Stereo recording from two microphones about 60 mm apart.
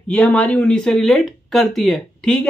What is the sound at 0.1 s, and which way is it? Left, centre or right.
Speech, centre.